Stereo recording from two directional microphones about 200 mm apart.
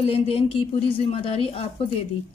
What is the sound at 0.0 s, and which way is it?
A woman's voice, 30° left (ahead or behind).